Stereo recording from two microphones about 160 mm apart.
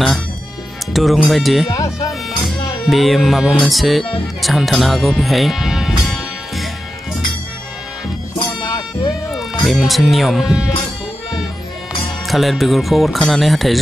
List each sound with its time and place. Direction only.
0.9 s speech: centre (ahead or behind)
1.7 s speech: 20° left (ahead or behind)
2.4 s speech: centre (ahead or behind)
8.6 s music: 25° left (ahead or behind)
9.3 s speech: centre (ahead or behind)
12.3 s speech: centre (ahead or behind)